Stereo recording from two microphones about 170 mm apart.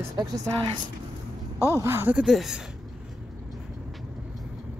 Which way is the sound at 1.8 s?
15° right (ahead or behind).